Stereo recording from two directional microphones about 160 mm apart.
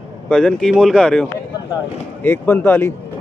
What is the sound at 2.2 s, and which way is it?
Speech, 15° left (ahead or behind).